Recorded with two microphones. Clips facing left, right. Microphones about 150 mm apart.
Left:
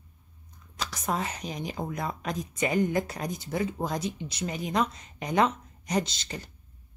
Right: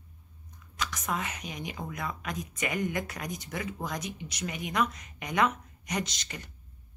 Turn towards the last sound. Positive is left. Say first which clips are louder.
# left 5 dB
turn(degrees=30)  # may be behind; listen again after turning